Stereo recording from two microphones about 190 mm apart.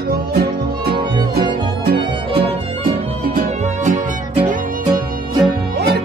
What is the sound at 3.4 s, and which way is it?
Music, 40° right (ahead or behind).